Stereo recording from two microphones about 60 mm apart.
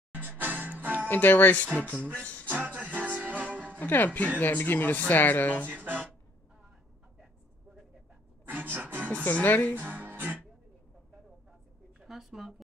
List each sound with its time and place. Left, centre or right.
0.1 s music: right
1.0 s speech: left
2.1 s music: left
2.4 s music: right
3.8 s speech: left
5.7 s speech: right
8.5 s music: right
9.2 s speech: left
9.8 s music: right
12.0 s a sound: centre